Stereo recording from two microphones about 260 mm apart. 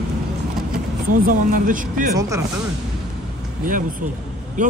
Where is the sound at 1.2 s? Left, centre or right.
Right.